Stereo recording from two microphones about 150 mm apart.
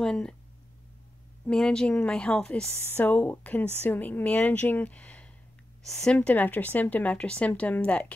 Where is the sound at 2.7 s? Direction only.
15° right (ahead or behind).